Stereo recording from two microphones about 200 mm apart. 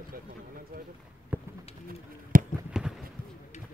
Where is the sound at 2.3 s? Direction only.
45° right (ahead or behind).